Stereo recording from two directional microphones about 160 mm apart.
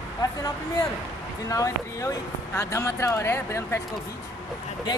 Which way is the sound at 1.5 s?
20° left (ahead or behind).